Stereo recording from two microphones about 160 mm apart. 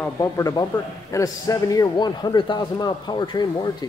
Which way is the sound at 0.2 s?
20° left (ahead or behind).